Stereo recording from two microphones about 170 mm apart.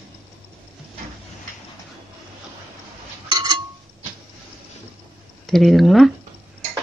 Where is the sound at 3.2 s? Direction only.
25° right (ahead or behind).